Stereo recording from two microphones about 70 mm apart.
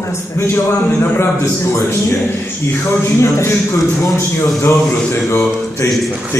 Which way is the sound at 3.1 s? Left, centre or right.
Left.